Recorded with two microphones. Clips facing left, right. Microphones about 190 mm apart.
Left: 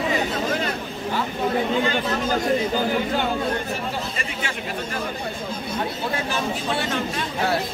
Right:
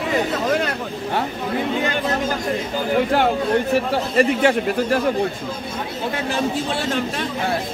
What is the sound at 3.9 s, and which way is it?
A man's voice, 60° right (ahead or behind).